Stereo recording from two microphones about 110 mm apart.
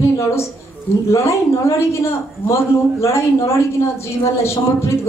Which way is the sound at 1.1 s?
25° left (ahead or behind).